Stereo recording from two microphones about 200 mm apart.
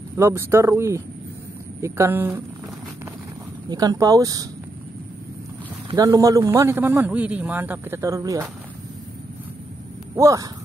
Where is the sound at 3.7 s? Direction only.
20° right (ahead or behind).